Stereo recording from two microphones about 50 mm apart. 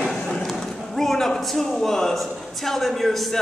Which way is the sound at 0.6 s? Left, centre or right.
Centre.